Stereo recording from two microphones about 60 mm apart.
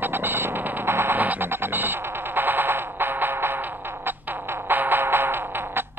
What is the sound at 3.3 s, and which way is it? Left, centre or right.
Music, right.